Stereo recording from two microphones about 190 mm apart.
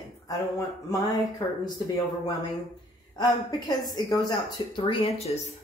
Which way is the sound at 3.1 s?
20° left (ahead or behind).